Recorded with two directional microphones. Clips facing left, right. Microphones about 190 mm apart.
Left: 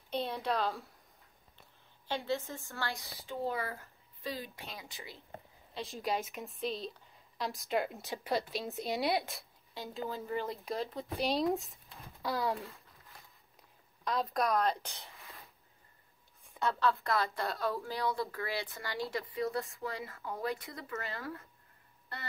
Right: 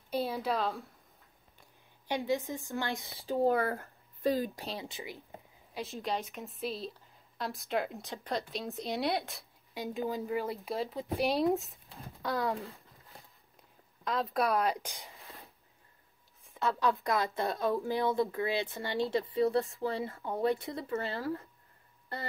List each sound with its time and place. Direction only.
0.1 s a woman's voice: 5° right (ahead or behind)
1.6 s a woman's voice: 15° right (ahead or behind)
3.3 s speech: 50° right (ahead or behind)
4.8 s speech: 15° right (ahead or behind)
5.8 s a woman's voice: centre (ahead or behind)
9.8 s a woman's voice: 15° right (ahead or behind); by 12.8 s centre (ahead or behind)
14.0 s speech: centre (ahead or behind)
16.4 s a sound: centre (ahead or behind)
16.8 s speech: 15° right (ahead or behind)